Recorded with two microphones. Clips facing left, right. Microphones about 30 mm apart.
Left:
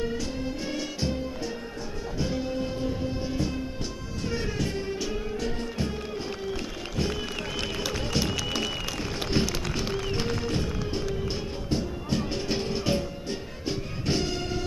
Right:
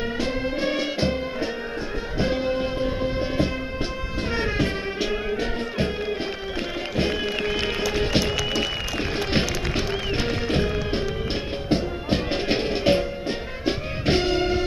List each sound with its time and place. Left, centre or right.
0.0 s music: right
9.8 s music: right